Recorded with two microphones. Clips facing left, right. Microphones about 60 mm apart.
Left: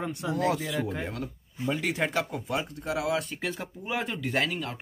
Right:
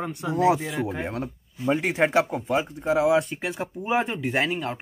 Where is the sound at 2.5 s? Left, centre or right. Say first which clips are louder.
Right 7 dB; centre.